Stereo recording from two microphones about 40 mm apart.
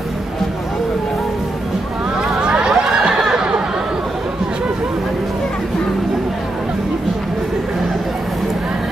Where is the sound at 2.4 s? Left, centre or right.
Right.